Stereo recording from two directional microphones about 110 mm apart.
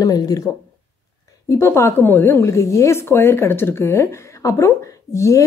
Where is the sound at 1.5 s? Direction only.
25° left (ahead or behind).